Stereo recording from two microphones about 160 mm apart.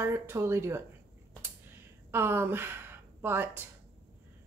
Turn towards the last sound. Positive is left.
turn(degrees=-15)  # may be behind; listen again after turning